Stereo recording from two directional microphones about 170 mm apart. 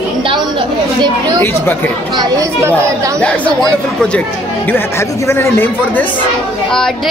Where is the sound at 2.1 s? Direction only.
20° right (ahead or behind).